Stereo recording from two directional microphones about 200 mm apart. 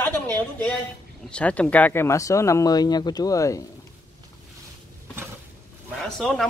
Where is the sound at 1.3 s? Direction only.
5° left (ahead or behind).